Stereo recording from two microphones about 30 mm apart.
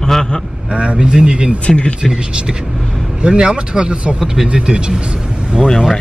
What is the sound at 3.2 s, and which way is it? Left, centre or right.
Speech, right.